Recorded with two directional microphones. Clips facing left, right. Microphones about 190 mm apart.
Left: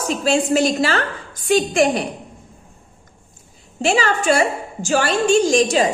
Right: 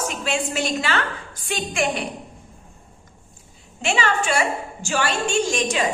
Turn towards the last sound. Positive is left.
turn(degrees=35)  # may be behind; listen again after turning